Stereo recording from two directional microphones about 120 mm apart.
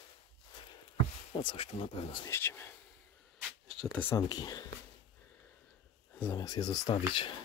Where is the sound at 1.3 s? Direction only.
45° left (ahead or behind).